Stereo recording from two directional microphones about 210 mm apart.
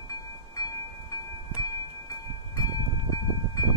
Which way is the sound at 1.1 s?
20° left (ahead or behind).